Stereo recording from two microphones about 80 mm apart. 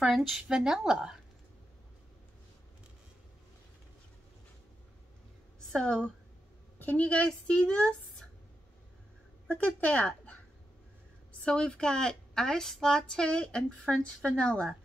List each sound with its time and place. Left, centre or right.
0.0 s a woman's voice: centre
5.7 s a woman's voice: centre
9.8 s speech: centre
11.4 s a woman's voice: centre